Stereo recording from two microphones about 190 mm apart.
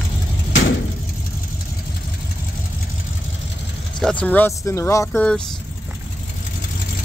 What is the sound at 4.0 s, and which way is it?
Speech, 5° left (ahead or behind).